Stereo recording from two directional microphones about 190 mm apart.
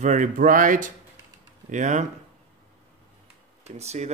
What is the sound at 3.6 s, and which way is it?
Speech, 35° right (ahead or behind).